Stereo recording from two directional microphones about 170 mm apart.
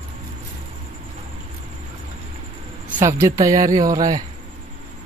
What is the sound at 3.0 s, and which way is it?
Speech, 15° right (ahead or behind).